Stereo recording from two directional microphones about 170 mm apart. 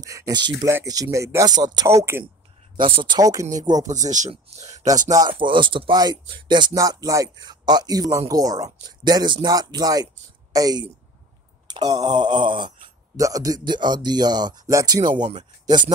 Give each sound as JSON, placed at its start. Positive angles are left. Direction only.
{"t": 0.0, "sound": "speech", "side_deg": -20}
{"t": 2.8, "sound": "speech", "side_deg": -30}
{"t": 4.1, "sound": "speech", "side_deg": -45}
{"t": 4.8, "sound": "speech", "side_deg": -20}
{"t": 15.0, "sound": "speech", "side_deg": -45}
{"t": 15.6, "sound": "speech", "side_deg": -25}